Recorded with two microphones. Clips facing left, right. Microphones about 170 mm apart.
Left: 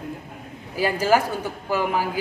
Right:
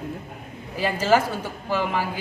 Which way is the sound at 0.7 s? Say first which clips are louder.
Left 1 dB; 10° left (ahead or behind).